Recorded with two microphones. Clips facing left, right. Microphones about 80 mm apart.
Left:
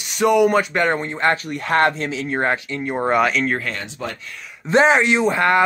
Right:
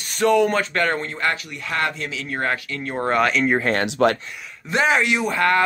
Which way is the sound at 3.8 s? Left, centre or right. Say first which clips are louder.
Right 11 dB; right.